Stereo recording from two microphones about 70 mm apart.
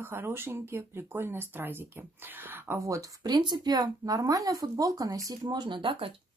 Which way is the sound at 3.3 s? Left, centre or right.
Right.